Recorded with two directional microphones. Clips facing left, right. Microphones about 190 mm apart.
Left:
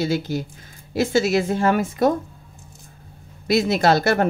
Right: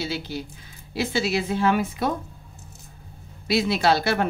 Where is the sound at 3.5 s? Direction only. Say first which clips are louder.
Left 3 dB; 45° left (ahead or behind).